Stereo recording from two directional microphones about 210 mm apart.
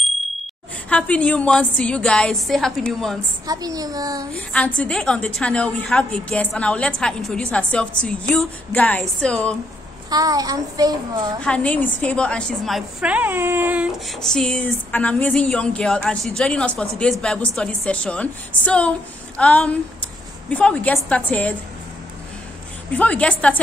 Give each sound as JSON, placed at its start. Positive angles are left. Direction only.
{"t": 0.8, "sound": "a woman's voice", "side_deg": 5}
{"t": 3.4, "sound": "a child's voice", "side_deg": -15}
{"t": 4.3, "sound": "a woman's voice", "side_deg": 5}
{"t": 10.0, "sound": "a child's voice", "side_deg": -15}
{"t": 11.4, "sound": "a woman's voice", "side_deg": 5}
{"t": 22.9, "sound": "a woman's voice", "side_deg": 5}